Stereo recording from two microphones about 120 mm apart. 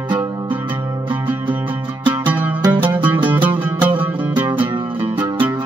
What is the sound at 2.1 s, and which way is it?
Music, 15° right (ahead or behind).